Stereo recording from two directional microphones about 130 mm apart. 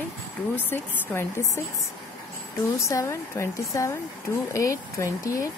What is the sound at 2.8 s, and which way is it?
A woman's voice, 25° left (ahead or behind).